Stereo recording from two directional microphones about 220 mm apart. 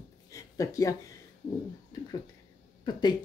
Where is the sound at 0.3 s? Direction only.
15° left (ahead or behind).